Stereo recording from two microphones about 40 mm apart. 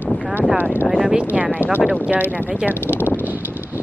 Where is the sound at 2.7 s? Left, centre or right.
Left.